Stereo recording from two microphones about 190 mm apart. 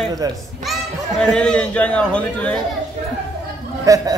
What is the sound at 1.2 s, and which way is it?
A man's voice, 5° left (ahead or behind).